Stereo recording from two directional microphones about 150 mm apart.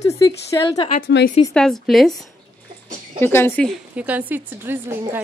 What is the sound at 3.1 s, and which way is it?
Speech, 15° left (ahead or behind).